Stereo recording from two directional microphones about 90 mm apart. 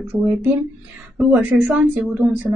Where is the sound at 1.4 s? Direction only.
15° right (ahead or behind).